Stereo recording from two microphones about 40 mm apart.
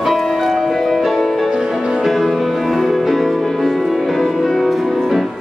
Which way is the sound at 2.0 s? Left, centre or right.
Centre.